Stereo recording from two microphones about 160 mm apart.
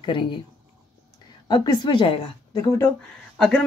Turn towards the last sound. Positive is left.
turn(degrees=5)  # may be behind; listen again after turning